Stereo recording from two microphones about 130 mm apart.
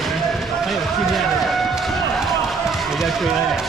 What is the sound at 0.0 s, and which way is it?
Run, centre (ahead or behind).